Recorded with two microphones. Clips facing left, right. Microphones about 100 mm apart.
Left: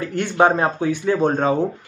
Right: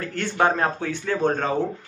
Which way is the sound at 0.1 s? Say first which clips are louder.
Left 5 dB; 15° left (ahead or behind).